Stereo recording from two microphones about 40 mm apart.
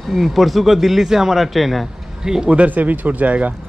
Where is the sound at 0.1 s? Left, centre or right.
Centre.